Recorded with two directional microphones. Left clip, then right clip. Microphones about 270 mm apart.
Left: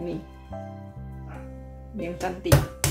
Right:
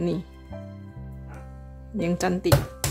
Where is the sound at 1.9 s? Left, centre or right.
Right.